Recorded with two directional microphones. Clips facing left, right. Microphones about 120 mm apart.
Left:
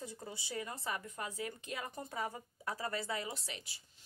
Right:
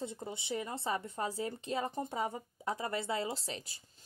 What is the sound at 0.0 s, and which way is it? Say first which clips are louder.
A woman's voice: right 5 dB; 20° right (ahead or behind).